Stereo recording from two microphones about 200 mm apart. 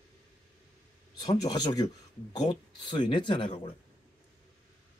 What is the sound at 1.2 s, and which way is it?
Speech, 20° left (ahead or behind).